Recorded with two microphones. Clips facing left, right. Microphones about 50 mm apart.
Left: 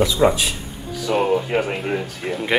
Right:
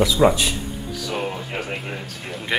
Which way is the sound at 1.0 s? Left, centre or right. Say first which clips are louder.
Left 10 dB; centre.